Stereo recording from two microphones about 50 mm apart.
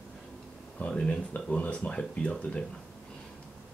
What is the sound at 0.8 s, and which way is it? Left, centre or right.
Speech, left.